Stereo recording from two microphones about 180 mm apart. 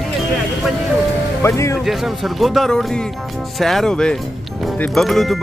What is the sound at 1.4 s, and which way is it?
Speech, 15° left (ahead or behind).